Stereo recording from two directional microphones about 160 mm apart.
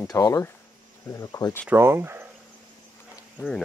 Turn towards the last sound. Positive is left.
turn(degrees=5)  # may be behind; listen again after turning